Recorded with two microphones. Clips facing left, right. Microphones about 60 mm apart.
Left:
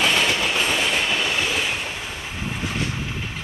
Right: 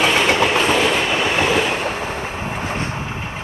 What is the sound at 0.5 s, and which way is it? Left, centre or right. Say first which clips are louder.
Train: right 6 dB; right.